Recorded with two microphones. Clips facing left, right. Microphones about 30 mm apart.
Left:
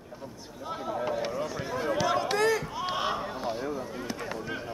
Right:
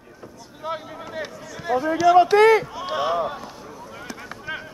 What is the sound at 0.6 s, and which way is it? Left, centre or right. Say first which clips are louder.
Speech: right 7 dB; right.